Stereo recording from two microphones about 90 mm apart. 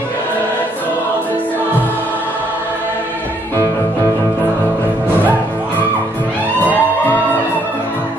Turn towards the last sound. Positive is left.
turn(degrees=20)  # may be behind; listen again after turning